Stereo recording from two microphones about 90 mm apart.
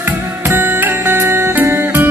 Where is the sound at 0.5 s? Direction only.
25° right (ahead or behind).